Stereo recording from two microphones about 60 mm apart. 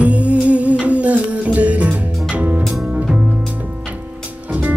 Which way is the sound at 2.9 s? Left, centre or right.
Centre.